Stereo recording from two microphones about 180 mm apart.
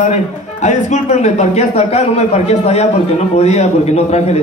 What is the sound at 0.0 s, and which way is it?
A man's voice, 40° left (ahead or behind).